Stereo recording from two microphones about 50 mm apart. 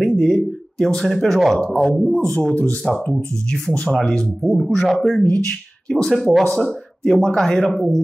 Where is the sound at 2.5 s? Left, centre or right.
Left.